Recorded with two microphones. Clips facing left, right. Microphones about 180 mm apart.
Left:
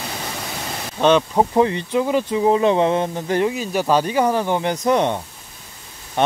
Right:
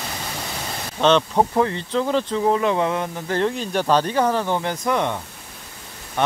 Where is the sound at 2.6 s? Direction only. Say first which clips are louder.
Left 4 dB; 25° left (ahead or behind).